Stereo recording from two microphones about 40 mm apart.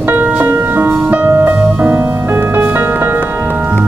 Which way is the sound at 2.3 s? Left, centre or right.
Right.